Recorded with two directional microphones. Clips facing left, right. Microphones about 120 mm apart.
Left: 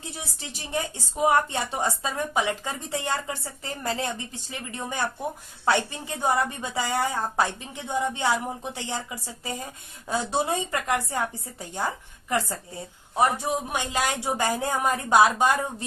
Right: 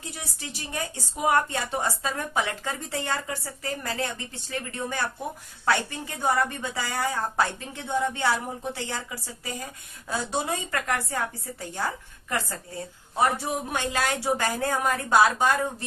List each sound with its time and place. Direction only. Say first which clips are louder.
0.4 s a woman's voice: left 3 dB; 25° left (ahead or behind)